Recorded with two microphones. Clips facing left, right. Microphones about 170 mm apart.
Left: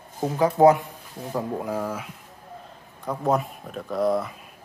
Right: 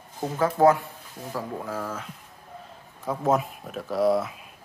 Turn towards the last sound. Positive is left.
turn(degrees=0)  # may be behind; listen again after turning